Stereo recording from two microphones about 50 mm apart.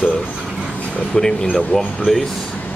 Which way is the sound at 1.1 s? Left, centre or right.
Centre.